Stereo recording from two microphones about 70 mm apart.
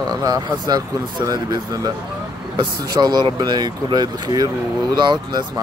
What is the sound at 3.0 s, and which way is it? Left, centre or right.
Speech, right.